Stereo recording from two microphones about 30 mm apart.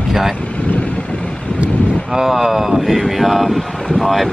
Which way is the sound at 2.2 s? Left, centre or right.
Centre.